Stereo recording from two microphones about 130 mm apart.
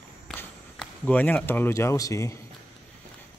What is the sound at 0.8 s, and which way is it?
Speech, 10° left (ahead or behind).